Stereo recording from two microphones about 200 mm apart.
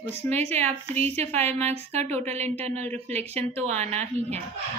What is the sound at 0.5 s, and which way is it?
Speech, 35° right (ahead or behind).